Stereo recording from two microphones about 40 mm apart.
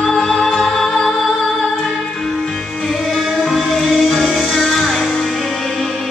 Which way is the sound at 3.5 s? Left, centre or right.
Centre.